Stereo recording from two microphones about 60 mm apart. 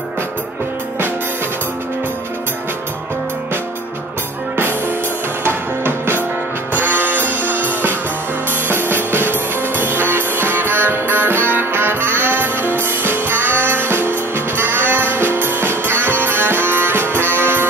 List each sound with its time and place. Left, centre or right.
4.6 s music: right
8.6 s music: right